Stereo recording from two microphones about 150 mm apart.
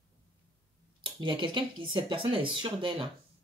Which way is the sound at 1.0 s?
30° right (ahead or behind).